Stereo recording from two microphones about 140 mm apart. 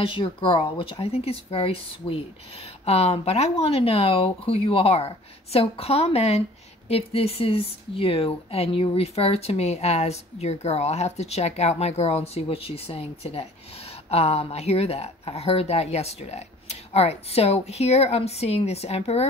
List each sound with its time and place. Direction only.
0.0 s speech: 40° left (ahead or behind)